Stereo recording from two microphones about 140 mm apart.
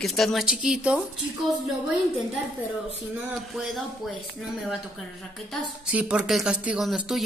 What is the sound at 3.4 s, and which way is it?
Speech, centre (ahead or behind).